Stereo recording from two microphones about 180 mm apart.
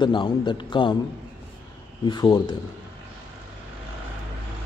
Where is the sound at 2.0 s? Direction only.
25° left (ahead or behind).